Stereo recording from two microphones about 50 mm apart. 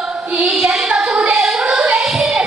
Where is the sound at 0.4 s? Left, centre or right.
Centre.